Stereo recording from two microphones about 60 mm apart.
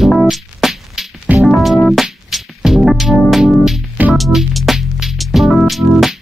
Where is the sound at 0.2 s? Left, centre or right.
Centre.